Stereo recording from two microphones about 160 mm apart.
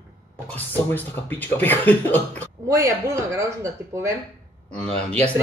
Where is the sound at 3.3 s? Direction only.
15° right (ahead or behind).